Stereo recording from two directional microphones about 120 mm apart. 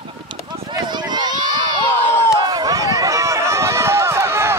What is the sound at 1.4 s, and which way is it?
Crowd, 35° right (ahead or behind).